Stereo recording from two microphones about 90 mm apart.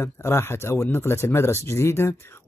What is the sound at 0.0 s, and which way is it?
Speech, 30° left (ahead or behind).